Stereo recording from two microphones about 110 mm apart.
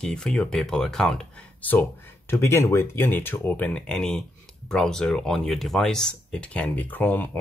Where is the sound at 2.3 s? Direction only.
25° left (ahead or behind).